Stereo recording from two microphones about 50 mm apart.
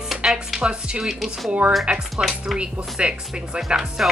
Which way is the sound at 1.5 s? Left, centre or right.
Right.